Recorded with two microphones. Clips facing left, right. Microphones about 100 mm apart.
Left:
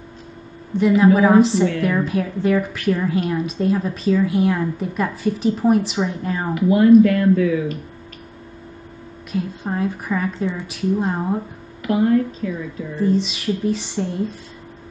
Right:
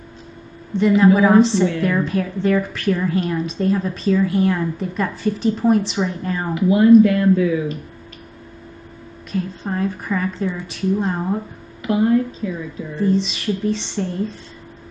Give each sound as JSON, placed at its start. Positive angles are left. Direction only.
{"t": 0.7, "sound": "a woman's voice", "side_deg": 5}
{"t": 7.0, "sound": "speech", "side_deg": -25}
{"t": 9.3, "sound": "a woman's voice", "side_deg": 10}
{"t": 11.8, "sound": "speech", "side_deg": -25}
{"t": 12.9, "sound": "speech", "side_deg": 5}